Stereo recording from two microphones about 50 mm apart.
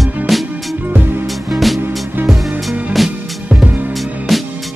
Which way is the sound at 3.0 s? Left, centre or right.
Centre.